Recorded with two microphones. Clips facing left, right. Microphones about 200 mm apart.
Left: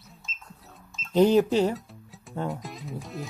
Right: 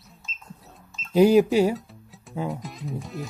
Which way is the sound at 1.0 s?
10° right (ahead or behind).